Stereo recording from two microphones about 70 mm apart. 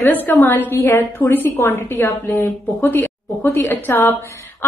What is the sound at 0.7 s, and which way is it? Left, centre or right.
A woman's voice, left.